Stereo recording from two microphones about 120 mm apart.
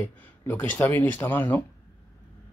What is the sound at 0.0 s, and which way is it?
Speech, 15° left (ahead or behind).